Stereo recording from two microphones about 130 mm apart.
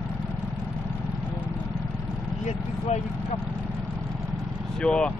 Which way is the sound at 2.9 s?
60° left (ahead or behind).